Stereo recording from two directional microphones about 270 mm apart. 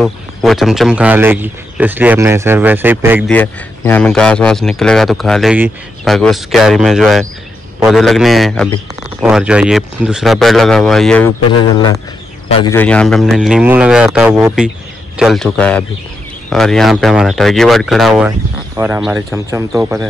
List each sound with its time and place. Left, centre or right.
0.0 s speech: centre
3.3 s speech: centre
11.5 s a man's voice: centre
12.7 s speech: centre